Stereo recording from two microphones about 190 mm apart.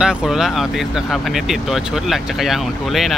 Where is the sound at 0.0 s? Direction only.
5° right (ahead or behind).